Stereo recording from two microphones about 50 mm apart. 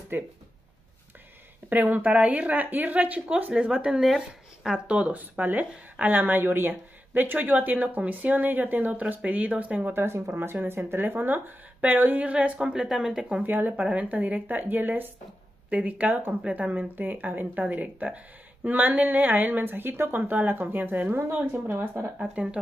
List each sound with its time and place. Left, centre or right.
0.1 s a woman's voice: right
1.7 s a woman's voice: right; by 5.1 s centre
5.4 s a woman's voice: right
9.9 s a woman's voice: right
12.8 s speech: centre
13.4 s a woman's voice: right
21.1 s a woman's voice: right
22.2 s speech: right